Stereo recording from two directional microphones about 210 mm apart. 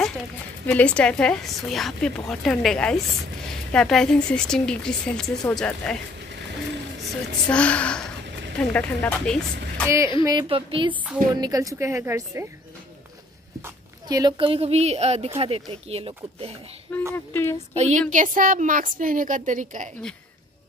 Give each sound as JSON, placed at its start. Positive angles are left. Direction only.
{"t": 0.7, "sound": "a woman's voice", "side_deg": 5}
{"t": 7.4, "sound": "a woman's voice", "side_deg": 5}
{"t": 9.8, "sound": "a woman's voice", "side_deg": -15}
{"t": 10.2, "sound": "a woman's voice", "side_deg": -25}
{"t": 14.0, "sound": "a woman's voice", "side_deg": -20}
{"t": 17.1, "sound": "speech", "side_deg": 10}
{"t": 17.7, "sound": "a woman's voice", "side_deg": -35}